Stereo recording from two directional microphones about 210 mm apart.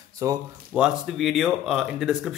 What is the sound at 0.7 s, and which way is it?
Speech, 5° right (ahead or behind).